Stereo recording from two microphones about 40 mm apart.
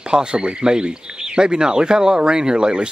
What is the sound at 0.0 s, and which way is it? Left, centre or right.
Speech, right.